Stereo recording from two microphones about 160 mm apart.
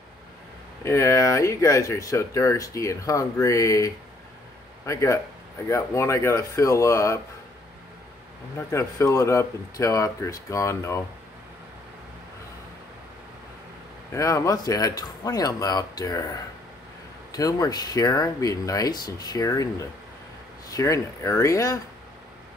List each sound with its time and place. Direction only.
0.8 s speech: 15° left (ahead or behind)
8.5 s speech: 15° left (ahead or behind)
14.1 s speech: 20° left (ahead or behind)
17.3 s speech: 20° left (ahead or behind)